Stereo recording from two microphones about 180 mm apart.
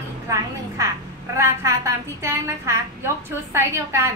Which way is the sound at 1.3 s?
15° right (ahead or behind).